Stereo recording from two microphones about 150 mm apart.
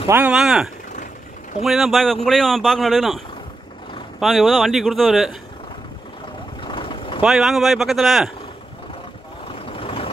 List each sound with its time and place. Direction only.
0.1 s speech: 10° right (ahead or behind)
4.2 s speech: centre (ahead or behind)
6.6 s vehicle: 35° left (ahead or behind)
7.2 s speech: 5° right (ahead or behind)
9.5 s vehicle: 35° left (ahead or behind)